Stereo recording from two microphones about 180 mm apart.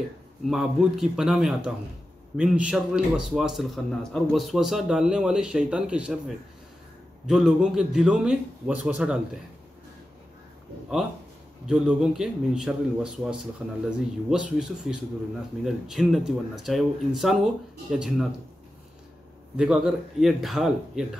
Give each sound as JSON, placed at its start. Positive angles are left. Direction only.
{"t": 0.5, "sound": "a man's voice", "side_deg": 0}
{"t": 11.6, "sound": "a man's voice", "side_deg": -5}
{"t": 19.5, "sound": "a man's voice", "side_deg": -5}